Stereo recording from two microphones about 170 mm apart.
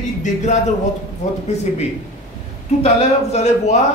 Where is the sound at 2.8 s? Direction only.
40° left (ahead or behind).